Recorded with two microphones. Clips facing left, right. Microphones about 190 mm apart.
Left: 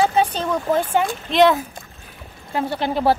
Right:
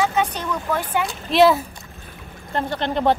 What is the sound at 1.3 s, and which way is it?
Speech, 5° right (ahead or behind).